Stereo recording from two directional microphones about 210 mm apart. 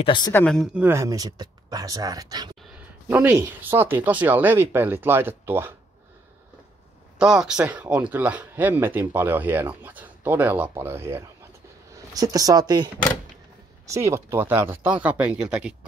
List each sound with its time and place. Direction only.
0.0 s speech: 20° left (ahead or behind)
0.3 s speech: 5° left (ahead or behind)
0.8 s speech: 15° right (ahead or behind)
7.2 s speech: 5° right (ahead or behind)